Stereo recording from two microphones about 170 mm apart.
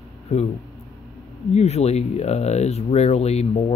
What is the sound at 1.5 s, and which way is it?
Speech, 40° left (ahead or behind).